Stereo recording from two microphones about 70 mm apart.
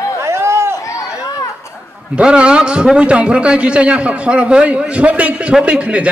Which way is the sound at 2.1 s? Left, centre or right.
Centre.